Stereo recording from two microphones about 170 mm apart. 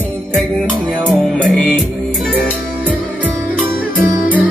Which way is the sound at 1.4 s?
5° left (ahead or behind).